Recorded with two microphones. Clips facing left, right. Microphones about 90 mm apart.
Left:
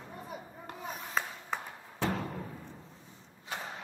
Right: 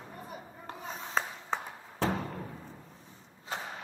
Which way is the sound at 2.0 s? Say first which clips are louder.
Right 1 dB; centre (ahead or behind).